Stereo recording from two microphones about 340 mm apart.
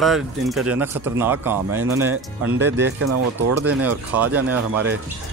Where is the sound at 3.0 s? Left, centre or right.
Right.